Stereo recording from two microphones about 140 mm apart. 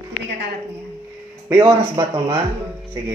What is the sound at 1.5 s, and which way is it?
Speech, 25° right (ahead or behind).